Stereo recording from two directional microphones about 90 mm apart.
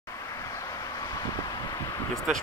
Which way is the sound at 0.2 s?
35° left (ahead or behind).